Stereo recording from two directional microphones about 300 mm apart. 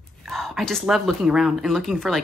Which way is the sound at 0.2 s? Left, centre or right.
Centre.